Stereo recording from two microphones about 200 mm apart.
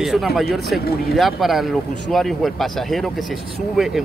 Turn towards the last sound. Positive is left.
turn(degrees=0)  # may be behind; listen again after turning